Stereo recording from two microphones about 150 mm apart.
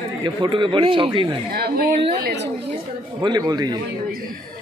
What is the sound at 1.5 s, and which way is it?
Speech, 90° right.